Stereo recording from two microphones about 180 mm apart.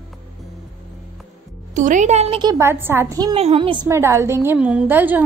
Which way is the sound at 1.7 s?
45° right (ahead or behind).